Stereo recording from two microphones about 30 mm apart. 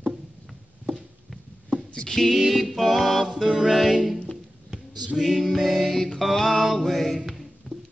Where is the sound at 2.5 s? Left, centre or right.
Centre.